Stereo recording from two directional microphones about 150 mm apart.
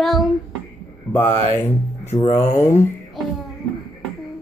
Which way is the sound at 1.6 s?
15° left (ahead or behind).